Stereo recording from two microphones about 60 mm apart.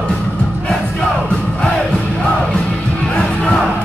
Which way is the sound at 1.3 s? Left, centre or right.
Centre.